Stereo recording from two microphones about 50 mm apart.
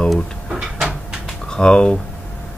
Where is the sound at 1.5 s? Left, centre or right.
Centre.